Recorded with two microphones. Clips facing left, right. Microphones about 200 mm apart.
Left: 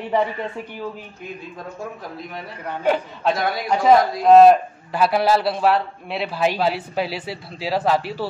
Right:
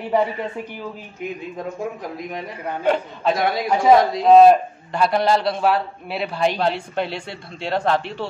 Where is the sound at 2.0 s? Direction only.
15° right (ahead or behind).